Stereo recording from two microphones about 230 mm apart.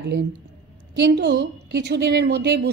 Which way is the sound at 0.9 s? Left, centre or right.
Right.